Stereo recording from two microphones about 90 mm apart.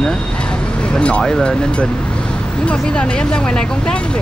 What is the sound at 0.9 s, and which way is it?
Speech, 10° left (ahead or behind).